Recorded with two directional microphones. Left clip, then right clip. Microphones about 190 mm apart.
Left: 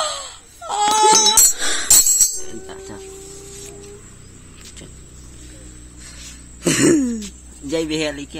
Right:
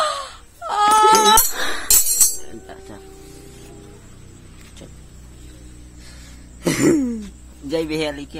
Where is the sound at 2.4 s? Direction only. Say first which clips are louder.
Left 4 dB; 20° left (ahead or behind).